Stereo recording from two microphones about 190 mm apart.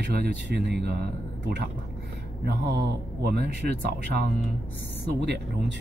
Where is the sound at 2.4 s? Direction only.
60° right (ahead or behind).